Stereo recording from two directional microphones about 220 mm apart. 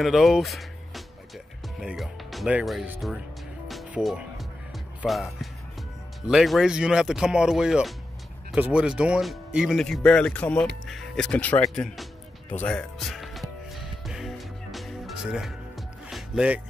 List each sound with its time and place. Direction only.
0.0 s music: centre (ahead or behind)
8.5 s speech: 5° right (ahead or behind)
12.6 s music: centre (ahead or behind)